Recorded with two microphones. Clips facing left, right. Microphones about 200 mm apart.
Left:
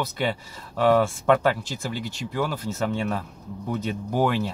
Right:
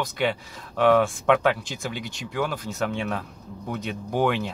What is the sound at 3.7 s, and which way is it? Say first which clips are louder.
Speech: left 1 dB; 5° left (ahead or behind).